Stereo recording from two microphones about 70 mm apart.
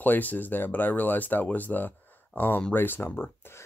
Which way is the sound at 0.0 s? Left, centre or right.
Left.